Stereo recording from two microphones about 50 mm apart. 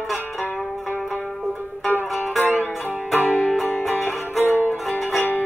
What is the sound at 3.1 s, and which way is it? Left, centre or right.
Music, left.